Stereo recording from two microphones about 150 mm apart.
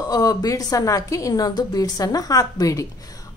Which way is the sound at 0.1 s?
25° left (ahead or behind).